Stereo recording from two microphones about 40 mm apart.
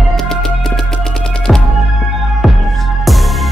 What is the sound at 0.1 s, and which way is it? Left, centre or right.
Music, centre.